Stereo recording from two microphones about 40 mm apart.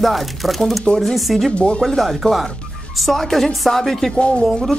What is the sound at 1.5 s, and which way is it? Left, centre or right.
Speech, left.